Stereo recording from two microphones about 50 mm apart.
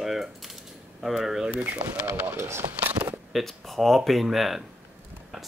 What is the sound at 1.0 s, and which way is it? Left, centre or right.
Speech, centre.